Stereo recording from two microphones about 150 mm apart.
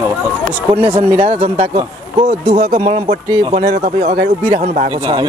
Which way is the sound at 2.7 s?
55° right (ahead or behind).